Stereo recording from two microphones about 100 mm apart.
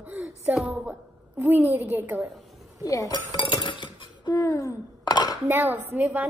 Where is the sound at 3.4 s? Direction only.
55° left (ahead or behind).